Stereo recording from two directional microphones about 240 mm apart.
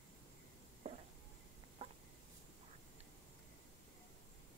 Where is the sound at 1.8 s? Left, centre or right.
Right.